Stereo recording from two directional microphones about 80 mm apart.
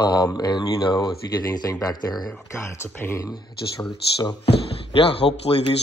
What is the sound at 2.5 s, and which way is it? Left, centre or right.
Speech, left.